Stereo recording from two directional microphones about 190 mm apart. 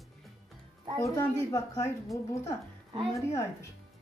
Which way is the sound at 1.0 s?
15° left (ahead or behind).